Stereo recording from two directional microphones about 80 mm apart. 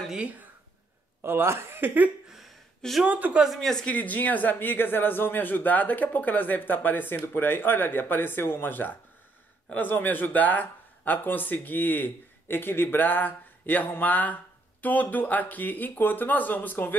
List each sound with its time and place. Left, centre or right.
0.1 s speech: centre
1.2 s speech: right
2.2 s a sound: centre
3.1 s speech: centre
3.4 s speech: centre
3.8 s speech: centre